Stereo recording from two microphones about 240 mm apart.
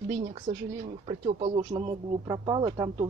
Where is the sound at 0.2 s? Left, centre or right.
Right.